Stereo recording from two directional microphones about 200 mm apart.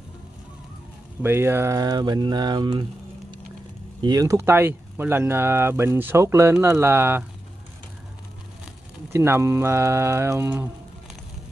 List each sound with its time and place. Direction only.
1.2 s speech: 10° right (ahead or behind)
9.1 s speech: 15° right (ahead or behind)